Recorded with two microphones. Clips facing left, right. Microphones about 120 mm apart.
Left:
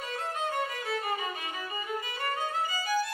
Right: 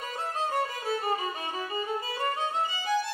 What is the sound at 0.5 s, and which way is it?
Violin, 30° right (ahead or behind).